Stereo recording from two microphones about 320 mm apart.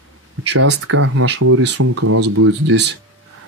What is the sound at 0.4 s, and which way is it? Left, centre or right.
Speech, right.